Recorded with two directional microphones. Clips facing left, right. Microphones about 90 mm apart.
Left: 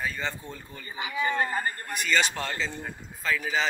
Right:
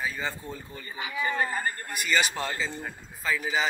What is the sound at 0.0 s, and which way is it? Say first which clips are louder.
Speech: even; 5° right (ahead or behind).